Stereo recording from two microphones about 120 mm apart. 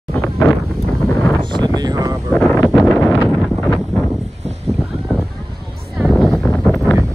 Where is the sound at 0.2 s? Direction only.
20° left (ahead or behind).